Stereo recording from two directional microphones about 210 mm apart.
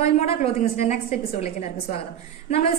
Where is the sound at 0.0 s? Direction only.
35° left (ahead or behind).